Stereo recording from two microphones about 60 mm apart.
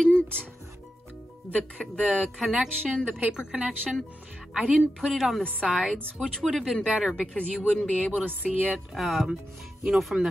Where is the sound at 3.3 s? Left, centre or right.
Centre.